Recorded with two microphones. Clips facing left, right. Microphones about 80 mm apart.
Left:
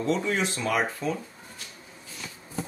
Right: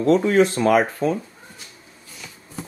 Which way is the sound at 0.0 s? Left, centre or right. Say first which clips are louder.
Right 10 dB; right.